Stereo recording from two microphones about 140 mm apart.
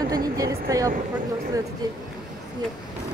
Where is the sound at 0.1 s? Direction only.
25° right (ahead or behind).